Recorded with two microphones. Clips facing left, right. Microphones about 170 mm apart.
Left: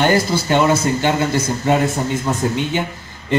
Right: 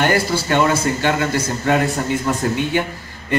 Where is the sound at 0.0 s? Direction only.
20° left (ahead or behind).